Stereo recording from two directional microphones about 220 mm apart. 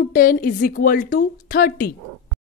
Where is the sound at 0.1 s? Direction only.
40° left (ahead or behind).